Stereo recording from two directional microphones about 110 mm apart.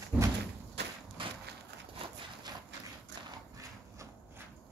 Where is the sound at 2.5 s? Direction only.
40° right (ahead or behind).